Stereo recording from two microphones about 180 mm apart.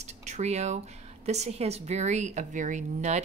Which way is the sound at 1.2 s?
40° right (ahead or behind).